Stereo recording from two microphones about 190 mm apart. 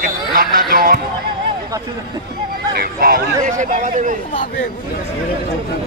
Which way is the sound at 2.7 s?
50° right (ahead or behind).